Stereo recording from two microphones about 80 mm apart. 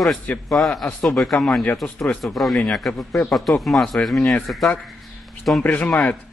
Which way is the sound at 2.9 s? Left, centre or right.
Left.